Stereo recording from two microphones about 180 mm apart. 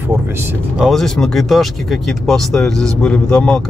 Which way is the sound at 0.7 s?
Centre (ahead or behind).